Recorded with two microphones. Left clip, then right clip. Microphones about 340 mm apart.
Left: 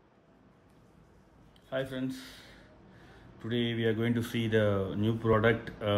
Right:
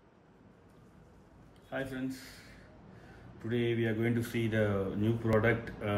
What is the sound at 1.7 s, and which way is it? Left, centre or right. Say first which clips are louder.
A man's voice: left 3 dB; left.